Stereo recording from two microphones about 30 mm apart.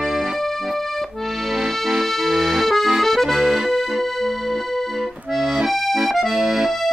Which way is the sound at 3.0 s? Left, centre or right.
Centre.